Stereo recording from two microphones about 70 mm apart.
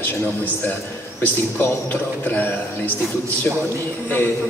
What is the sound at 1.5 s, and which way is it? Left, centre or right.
A man's voice, left.